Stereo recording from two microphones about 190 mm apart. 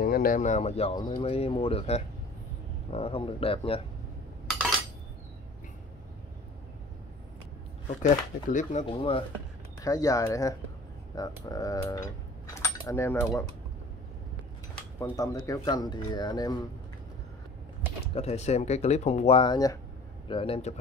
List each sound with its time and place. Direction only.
0.0 s speech: 50° left (ahead or behind); by 3.8 s 30° left (ahead or behind)
8.0 s speech: 40° left (ahead or behind)
8.8 s speech: 30° left (ahead or behind)
9.8 s speech: 20° left (ahead or behind)
12.5 s cutlery: 15° left (ahead or behind)
14.8 s speech: 15° left (ahead or behind)
18.1 s speech: 35° left (ahead or behind)